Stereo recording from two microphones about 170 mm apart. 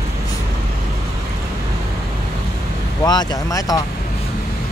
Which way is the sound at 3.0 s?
25° left (ahead or behind).